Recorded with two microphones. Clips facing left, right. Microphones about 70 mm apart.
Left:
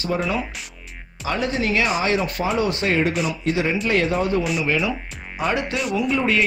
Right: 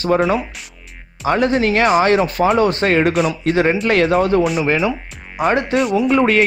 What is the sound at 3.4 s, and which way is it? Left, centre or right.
Speech, right.